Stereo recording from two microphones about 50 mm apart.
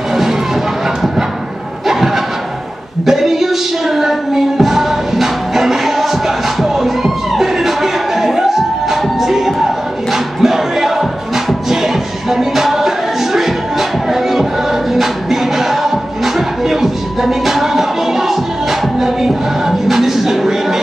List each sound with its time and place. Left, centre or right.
0.1 s music: centre
3.1 s music: centre
10.1 s music: centre
19.9 s a sound: centre